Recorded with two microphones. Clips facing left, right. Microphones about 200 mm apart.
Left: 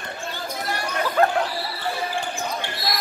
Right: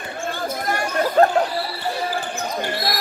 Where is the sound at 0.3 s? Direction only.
50° right (ahead or behind).